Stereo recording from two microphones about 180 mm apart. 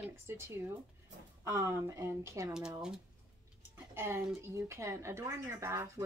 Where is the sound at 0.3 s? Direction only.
15° right (ahead or behind).